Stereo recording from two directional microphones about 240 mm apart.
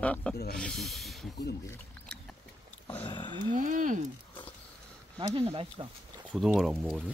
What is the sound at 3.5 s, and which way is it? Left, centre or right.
Speech, right.